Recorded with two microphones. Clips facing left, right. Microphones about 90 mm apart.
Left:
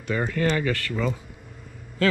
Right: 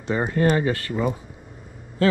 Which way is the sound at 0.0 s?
25° right (ahead or behind).